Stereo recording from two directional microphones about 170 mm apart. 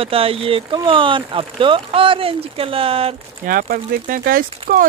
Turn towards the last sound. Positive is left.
turn(degrees=-60)  # may be behind; listen again after turning